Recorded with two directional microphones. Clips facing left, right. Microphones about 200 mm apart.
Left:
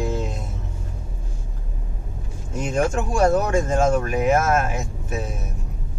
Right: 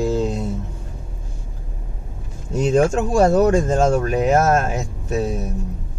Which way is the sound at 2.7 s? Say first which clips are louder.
Right 5 dB; 30° right (ahead or behind).